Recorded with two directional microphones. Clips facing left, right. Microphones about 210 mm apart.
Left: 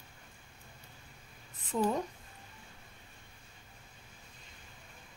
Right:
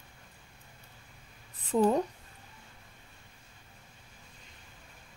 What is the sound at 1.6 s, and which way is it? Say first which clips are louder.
Speech: right 6 dB; 35° right (ahead or behind).